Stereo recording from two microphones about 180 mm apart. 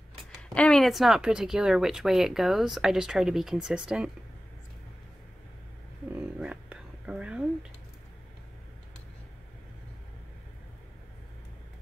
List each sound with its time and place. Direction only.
0.1 s speech: 5° left (ahead or behind)
6.1 s whispering: 5° right (ahead or behind)